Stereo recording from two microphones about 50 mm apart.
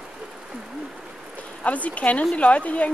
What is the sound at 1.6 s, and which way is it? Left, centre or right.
Speech, left.